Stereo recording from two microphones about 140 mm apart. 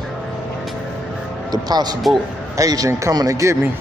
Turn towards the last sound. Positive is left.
turn(degrees=-20)  # may be behind; listen again after turning